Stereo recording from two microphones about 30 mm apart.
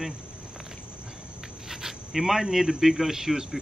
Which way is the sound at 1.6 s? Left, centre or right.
Centre.